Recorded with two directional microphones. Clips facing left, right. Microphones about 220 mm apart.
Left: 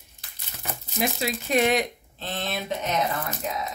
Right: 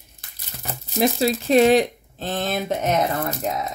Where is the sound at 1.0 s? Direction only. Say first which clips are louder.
Right 8 dB; 35° right (ahead or behind).